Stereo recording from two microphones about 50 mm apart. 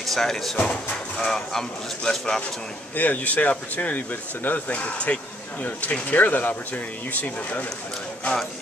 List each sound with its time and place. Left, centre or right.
0.0 s speech: centre
0.6 s speech: centre
3.0 s speech: left